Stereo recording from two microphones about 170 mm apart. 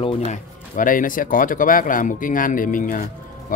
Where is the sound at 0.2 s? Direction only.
50° left (ahead or behind).